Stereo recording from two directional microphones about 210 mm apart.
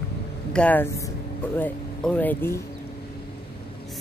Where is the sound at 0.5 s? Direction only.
5° left (ahead or behind).